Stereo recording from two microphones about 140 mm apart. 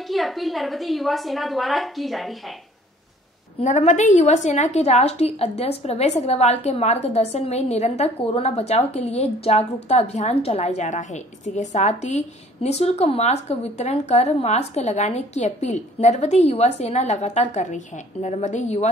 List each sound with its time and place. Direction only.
0.1 s a woman's voice: centre (ahead or behind)
3.6 s a woman's voice: 55° left (ahead or behind)